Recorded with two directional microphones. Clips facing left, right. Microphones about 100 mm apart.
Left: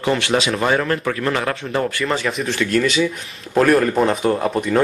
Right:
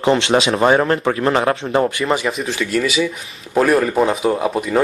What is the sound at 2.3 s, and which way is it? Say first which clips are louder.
Speech: even; centre (ahead or behind).